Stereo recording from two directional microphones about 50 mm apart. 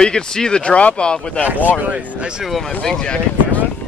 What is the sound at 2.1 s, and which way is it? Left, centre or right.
Speech, centre.